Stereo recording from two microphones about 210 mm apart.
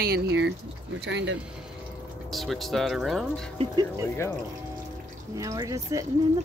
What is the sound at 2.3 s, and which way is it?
Speech, centre (ahead or behind).